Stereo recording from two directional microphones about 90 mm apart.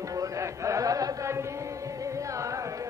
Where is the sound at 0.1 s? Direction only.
35° right (ahead or behind).